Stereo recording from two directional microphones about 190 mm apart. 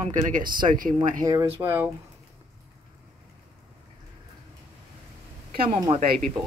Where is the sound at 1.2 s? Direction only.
20° right (ahead or behind).